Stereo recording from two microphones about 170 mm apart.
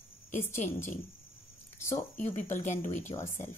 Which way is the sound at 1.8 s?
15° left (ahead or behind).